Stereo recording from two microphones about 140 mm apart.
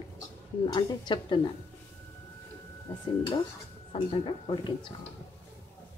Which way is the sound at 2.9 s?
35° left (ahead or behind).